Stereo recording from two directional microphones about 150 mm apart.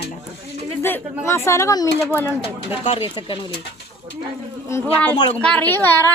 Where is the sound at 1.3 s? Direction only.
20° left (ahead or behind).